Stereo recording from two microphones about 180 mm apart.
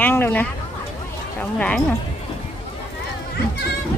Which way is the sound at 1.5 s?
5° left (ahead or behind).